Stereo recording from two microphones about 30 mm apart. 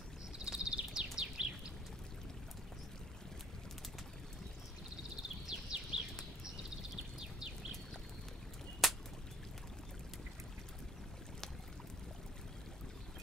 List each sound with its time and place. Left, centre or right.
0.4 s bird: right
5.5 s a sound: right
7.2 s bird: right
8.8 s whip: centre